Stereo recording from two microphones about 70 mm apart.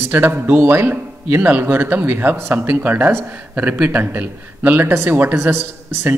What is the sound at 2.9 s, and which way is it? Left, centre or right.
A man's voice, right.